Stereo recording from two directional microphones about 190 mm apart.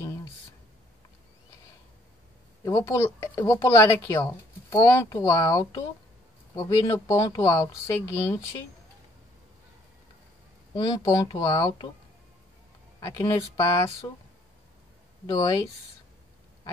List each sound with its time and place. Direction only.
2.6 s speech: 15° left (ahead or behind)
10.7 s speech: 20° left (ahead or behind)
13.1 s speech: 20° left (ahead or behind)
15.2 s speech: 20° left (ahead or behind)